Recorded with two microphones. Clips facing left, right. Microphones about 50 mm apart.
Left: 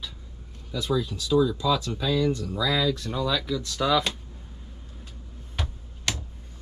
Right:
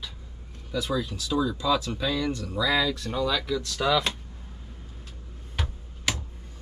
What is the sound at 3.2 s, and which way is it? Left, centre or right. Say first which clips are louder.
Speech: even; centre.